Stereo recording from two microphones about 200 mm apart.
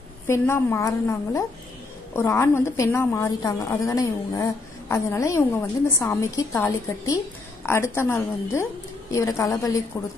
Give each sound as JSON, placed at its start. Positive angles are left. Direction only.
{"t": 0.3, "sound": "a woman's voice", "side_deg": 15}